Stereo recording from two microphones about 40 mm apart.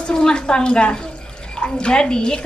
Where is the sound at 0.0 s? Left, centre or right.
Left.